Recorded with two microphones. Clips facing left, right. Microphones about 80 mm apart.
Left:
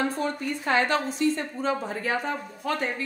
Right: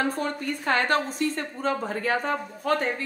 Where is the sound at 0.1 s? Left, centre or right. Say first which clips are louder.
Even; right.